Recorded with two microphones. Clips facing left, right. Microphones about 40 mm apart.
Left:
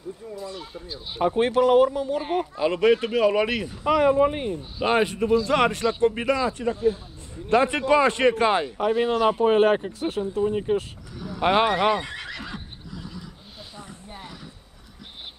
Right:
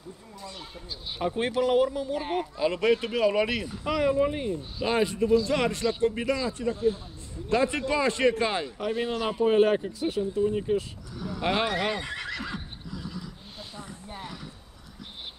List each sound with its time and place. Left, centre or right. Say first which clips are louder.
0.4 s speech: left 6 dB; centre
1.2 s speech: left 6 dB; left
2.1 s speech: left 4 dB; centre
2.5 s speech: left 4 dB; left
10.3 s speech: left 4 dB; left
11.4 s speech: left 7 dB; left
12.1 s neigh: right 1 dB; centre
14.1 s a sound: right 2 dB; centre